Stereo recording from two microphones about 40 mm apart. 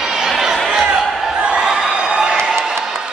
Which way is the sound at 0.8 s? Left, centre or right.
Right.